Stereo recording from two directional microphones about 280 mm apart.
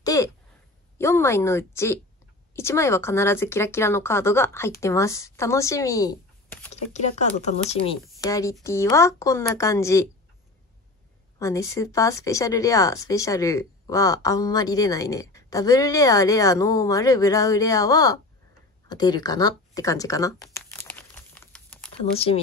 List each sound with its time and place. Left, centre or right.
0.0 s a sound: centre
0.9 s speech: centre
6.7 s speech: left
11.3 s speech: centre
20.5 s crumpling: centre
22.1 s speech: left